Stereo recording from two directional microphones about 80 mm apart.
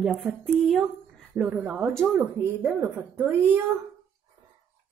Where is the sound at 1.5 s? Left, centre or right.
Right.